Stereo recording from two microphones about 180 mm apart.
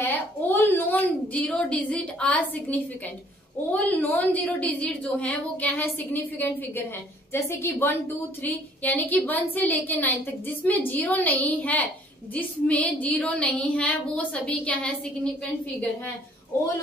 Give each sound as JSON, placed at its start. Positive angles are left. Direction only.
{"t": 0.0, "sound": "a woman's voice", "side_deg": 10}